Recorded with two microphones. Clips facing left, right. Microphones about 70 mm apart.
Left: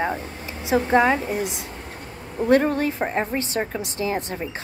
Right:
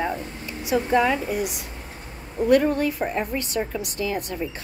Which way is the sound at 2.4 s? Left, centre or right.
Left.